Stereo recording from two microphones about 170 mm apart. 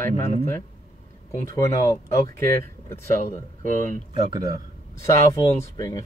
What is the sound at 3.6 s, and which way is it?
Speech, 55° right (ahead or behind).